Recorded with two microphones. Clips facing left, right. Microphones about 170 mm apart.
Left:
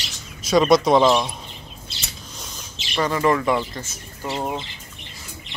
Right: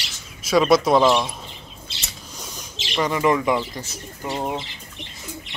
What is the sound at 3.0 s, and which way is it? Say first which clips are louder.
Speech: even; 15° right (ahead or behind).